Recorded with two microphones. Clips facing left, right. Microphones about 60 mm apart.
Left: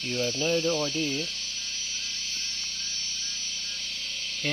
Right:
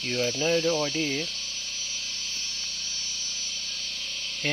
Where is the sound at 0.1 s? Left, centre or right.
Right.